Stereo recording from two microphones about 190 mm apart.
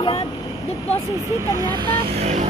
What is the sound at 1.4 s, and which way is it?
Speech, 20° right (ahead or behind).